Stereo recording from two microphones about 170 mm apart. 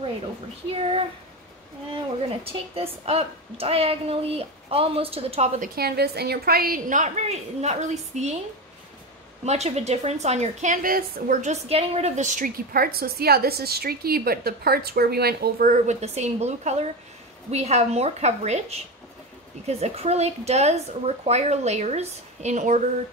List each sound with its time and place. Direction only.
0.7 s a woman's voice: 35° right (ahead or behind)
2.4 s a woman's voice: 35° right (ahead or behind)
5.6 s a woman's voice: 65° right (ahead or behind); by 8.4 s 40° right (ahead or behind)
9.4 s a woman's voice: 40° right (ahead or behind); by 15.7 s 65° right (ahead or behind)
15.7 s a woman's voice: 45° right (ahead or behind)